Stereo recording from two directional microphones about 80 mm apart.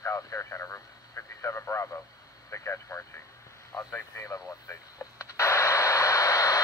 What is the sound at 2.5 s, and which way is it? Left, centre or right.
Vehicle, left.